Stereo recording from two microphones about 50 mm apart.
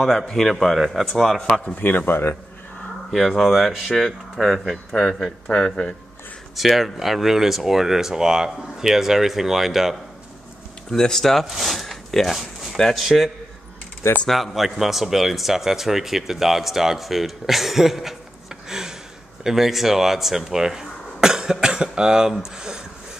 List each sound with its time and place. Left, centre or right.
0.0 s speech: centre
1.8 s speech: left
3.1 s speech: centre
6.5 s speech: centre
10.9 s speech: centre
14.3 s speech: centre
18.7 s a sound: centre
19.4 s speech: centre